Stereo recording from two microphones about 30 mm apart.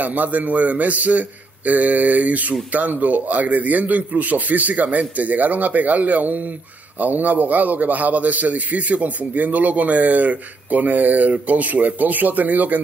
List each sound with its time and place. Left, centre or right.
0.0 s a man's voice: right